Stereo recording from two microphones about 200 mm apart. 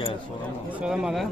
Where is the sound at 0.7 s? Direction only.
5° right (ahead or behind).